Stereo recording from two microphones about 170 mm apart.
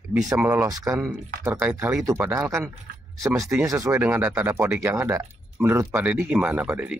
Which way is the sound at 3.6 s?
15° right (ahead or behind).